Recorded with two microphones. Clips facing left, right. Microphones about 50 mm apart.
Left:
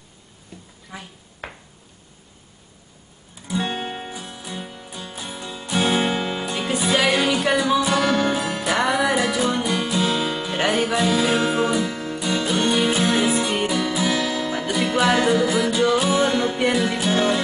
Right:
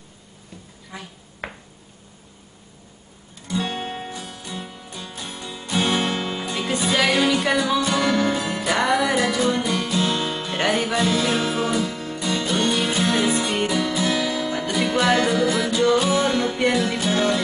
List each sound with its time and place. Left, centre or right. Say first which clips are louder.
0.9 s a sound: even; centre
1.4 s a sound: right 2 dB; centre
3.6 s music: left 1 dB; centre
9.8 s guitar: left 1 dB; centre
10.2 s music: left 1 dB; centre
12.5 s music: left 2 dB; centre